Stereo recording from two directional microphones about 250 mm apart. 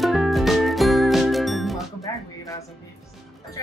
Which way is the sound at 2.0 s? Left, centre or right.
Centre.